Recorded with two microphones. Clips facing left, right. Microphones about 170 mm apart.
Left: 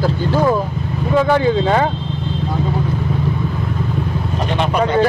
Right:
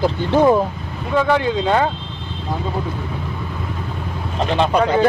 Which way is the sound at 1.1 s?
5° left (ahead or behind).